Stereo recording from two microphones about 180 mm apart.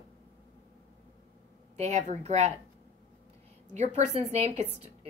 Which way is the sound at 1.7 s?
40° right (ahead or behind).